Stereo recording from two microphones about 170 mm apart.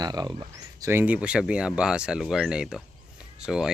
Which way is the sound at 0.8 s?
10° right (ahead or behind).